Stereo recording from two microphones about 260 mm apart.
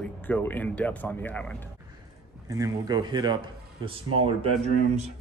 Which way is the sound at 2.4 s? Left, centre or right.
Centre.